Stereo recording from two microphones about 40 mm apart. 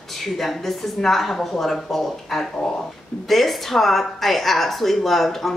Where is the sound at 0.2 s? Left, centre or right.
Centre.